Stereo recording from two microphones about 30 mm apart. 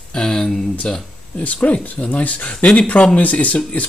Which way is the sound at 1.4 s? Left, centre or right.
Left.